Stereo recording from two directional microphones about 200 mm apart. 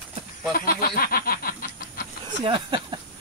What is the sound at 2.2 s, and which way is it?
Speech, 25° right (ahead or behind).